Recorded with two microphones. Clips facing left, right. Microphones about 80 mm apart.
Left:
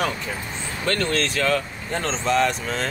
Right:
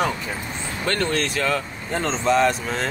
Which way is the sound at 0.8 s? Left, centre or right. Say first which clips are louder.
Even; centre.